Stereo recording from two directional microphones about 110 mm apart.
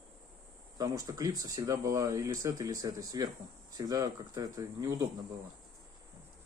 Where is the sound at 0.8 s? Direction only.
30° right (ahead or behind).